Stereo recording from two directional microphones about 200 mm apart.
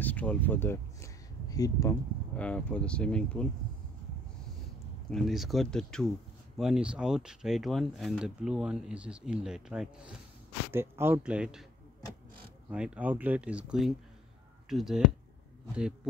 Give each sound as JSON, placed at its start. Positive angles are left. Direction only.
{"t": 0.0, "sound": "speech", "side_deg": 5}
{"t": 5.1, "sound": "speech", "side_deg": 0}
{"t": 12.6, "sound": "speech", "side_deg": -5}